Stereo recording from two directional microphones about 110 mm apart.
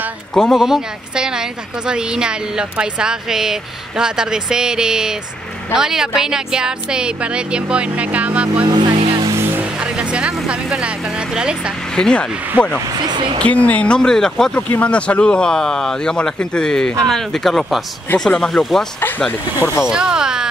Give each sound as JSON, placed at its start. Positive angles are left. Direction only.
{"t": 0.3, "sound": "a woman's voice", "side_deg": 5}
{"t": 8.6, "sound": "vehicle", "side_deg": -40}
{"t": 9.8, "sound": "speech", "side_deg": -10}
{"t": 11.9, "sound": "speech", "side_deg": 5}
{"t": 18.9, "sound": "speech", "side_deg": 15}
{"t": 19.8, "sound": "speech", "side_deg": -5}